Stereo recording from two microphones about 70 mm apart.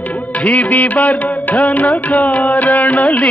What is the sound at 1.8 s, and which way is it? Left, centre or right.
Music, centre.